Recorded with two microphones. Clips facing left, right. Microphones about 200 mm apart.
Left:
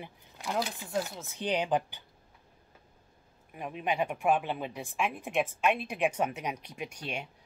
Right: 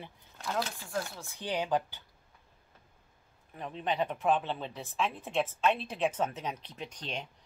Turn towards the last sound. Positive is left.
turn(degrees=10)  # may be behind; listen again after turning